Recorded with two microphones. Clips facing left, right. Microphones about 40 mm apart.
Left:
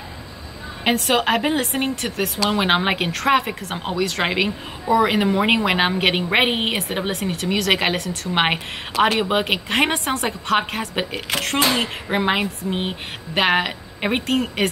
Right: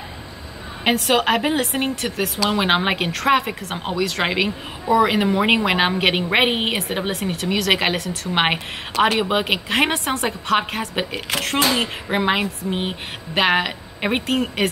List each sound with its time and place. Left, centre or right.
0.8 s a woman's voice: centre